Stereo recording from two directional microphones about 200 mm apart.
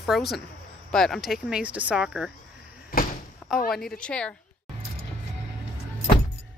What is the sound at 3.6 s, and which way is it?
Speech, centre (ahead or behind).